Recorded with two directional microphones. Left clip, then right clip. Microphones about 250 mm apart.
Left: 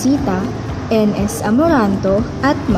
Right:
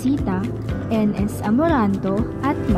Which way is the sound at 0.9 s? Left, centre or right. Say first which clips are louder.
Left 7 dB; right.